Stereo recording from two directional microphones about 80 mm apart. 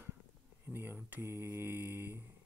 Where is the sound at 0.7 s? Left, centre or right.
Right.